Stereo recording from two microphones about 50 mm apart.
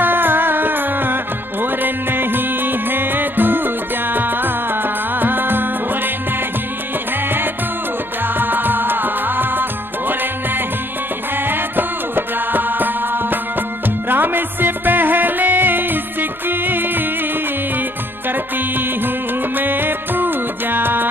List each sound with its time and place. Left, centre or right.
0.0 s music: right
8.4 s music: right
19.5 s music: right